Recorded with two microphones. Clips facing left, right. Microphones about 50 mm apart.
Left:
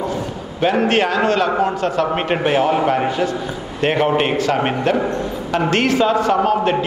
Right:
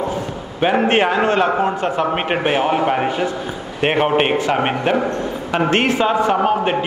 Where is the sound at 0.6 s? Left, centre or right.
Right.